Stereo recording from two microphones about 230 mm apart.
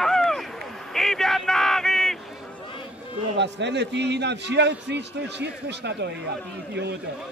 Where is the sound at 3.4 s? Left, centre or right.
Right.